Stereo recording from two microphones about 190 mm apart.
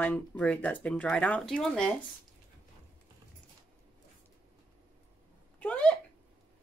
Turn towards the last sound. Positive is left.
turn(degrees=5)  # may be behind; listen again after turning